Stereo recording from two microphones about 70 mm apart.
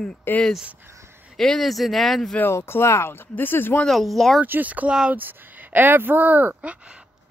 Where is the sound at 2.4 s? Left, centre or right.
Left.